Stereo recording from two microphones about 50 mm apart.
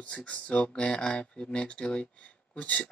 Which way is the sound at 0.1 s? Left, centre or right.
Left.